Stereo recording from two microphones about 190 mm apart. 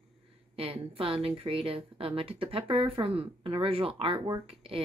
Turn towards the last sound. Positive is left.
turn(degrees=-30)  # may be behind; listen again after turning